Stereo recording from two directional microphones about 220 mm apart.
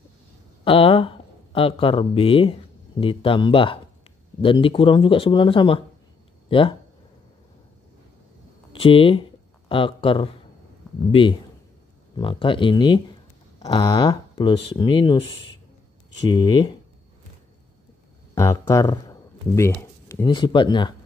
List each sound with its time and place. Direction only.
0.7 s speech: 25° left (ahead or behind)
8.7 s speech: 25° left (ahead or behind)
18.3 s speech: 15° left (ahead or behind)